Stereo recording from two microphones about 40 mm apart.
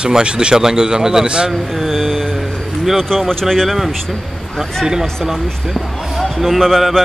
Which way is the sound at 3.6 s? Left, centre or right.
Centre.